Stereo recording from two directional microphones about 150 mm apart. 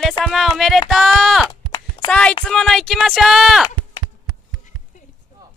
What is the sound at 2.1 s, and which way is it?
A woman's voice, 5° left (ahead or behind).